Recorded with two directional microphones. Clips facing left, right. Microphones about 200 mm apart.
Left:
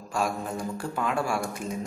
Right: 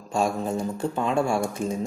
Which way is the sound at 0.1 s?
25° right (ahead or behind).